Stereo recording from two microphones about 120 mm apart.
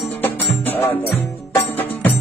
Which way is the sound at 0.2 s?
15° left (ahead or behind).